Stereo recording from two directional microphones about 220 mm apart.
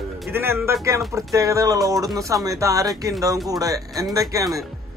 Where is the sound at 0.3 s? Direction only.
10° right (ahead or behind).